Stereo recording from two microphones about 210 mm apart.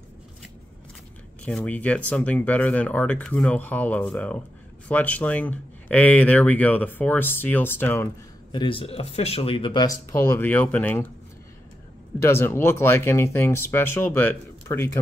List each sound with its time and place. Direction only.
1.4 s speech: 5° left (ahead or behind)
8.5 s speech: 20° left (ahead or behind)
12.2 s speech: 10° left (ahead or behind)